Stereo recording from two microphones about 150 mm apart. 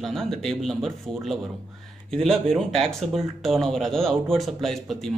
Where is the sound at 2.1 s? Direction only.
Centre (ahead or behind).